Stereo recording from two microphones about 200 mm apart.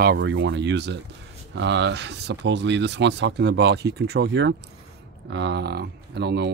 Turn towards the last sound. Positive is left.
turn(degrees=-55)  # may be behind; listen again after turning